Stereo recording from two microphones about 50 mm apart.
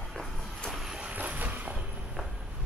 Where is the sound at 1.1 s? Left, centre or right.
Right.